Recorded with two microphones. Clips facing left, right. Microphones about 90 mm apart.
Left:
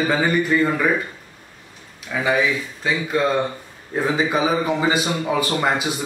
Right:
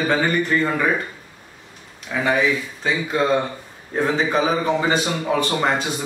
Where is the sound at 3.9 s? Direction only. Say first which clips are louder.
Even; 5° left (ahead or behind).